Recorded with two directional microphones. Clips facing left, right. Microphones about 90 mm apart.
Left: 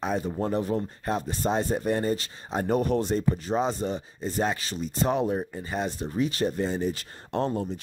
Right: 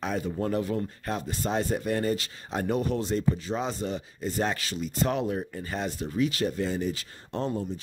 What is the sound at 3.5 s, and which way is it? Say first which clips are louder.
Speech: left 4 dB; 30° left (ahead or behind).